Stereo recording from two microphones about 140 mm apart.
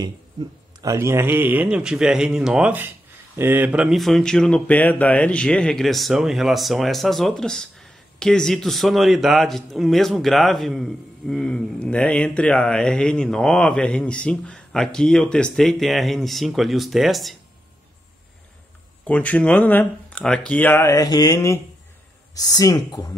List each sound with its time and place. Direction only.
0.7 s a man's voice: 20° right (ahead or behind); by 17.4 s centre (ahead or behind)
19.0 s speech: 10° left (ahead or behind); by 23.1 s 25° left (ahead or behind)